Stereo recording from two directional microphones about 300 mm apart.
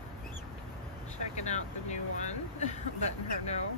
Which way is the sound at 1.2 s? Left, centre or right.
Left.